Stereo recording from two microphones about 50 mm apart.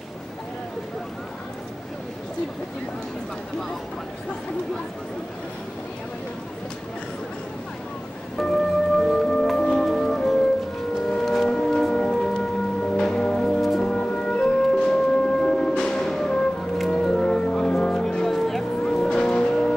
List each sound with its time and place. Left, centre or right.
8.4 s music: centre
11.1 s a sound: centre
11.9 s music: centre
13.6 s music: centre